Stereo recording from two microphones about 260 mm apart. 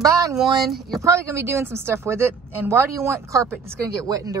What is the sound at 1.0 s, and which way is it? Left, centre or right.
A woman's voice, centre.